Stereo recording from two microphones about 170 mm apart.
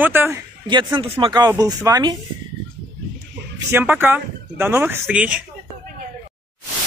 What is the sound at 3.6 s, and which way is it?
Speech, 15° right (ahead or behind).